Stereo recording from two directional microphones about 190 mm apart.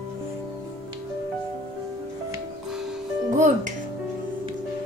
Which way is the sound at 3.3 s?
40° right (ahead or behind).